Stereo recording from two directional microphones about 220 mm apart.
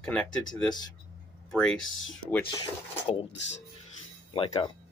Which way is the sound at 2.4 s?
20° left (ahead or behind).